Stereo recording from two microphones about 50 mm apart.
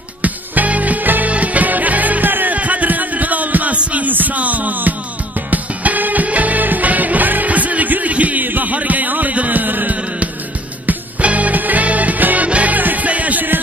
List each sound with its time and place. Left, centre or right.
0.2 s music: right